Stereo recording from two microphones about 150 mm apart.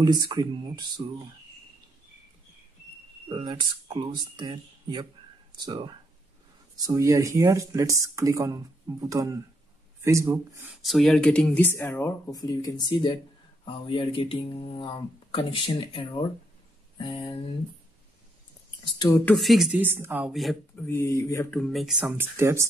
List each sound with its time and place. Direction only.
0.0 s speech: 25° right (ahead or behind)
3.3 s speech: 30° right (ahead or behind)
10.7 s speech: centre (ahead or behind); by 17.4 s 35° left (ahead or behind)
18.9 s speech: 25° left (ahead or behind)
19.2 s speech: centre (ahead or behind)
19.8 s speech: 15° right (ahead or behind)
20.2 s speech: centre (ahead or behind)
20.8 s speech: 15° left (ahead or behind)
21.5 s speech: centre (ahead or behind)
22.1 s speech: 15° right (ahead or behind)